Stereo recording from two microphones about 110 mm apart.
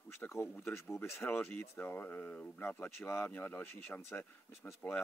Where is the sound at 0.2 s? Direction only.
20° left (ahead or behind).